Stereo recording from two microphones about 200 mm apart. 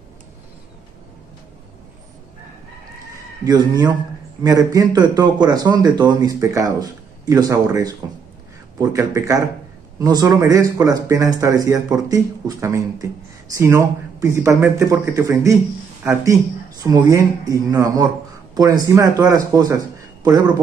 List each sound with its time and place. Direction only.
3.4 s speech: 20° right (ahead or behind)